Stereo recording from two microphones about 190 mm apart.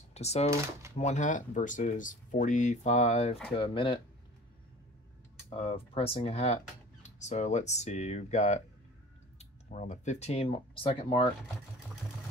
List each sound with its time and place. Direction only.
0.1 s speech: 35° left (ahead or behind)
5.5 s speech: 30° left (ahead or behind)